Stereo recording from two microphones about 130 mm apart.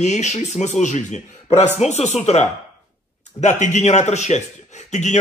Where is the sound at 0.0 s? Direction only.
60° left (ahead or behind).